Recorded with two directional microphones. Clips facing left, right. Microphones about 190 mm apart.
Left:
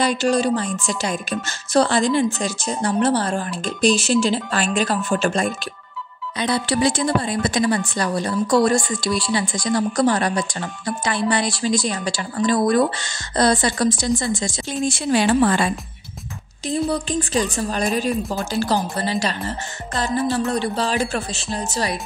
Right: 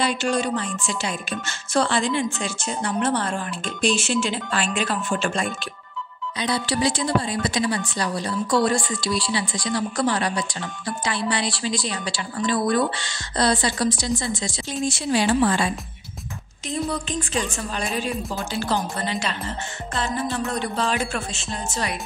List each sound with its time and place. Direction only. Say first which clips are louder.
0.0 s a woman's voice: left 4 dB; 40° left (ahead or behind)
6.3 s a woman's voice: left 3 dB; 55° left (ahead or behind)
16.6 s a woman's voice: left 5 dB; 35° left (ahead or behind)